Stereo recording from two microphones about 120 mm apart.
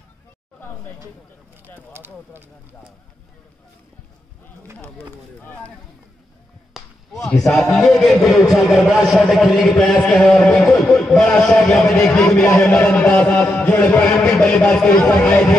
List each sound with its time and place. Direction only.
1.9 s speech: 20° right (ahead or behind)
4.7 s a man's voice: 15° left (ahead or behind)
7.2 s a man's voice: 5° left (ahead or behind)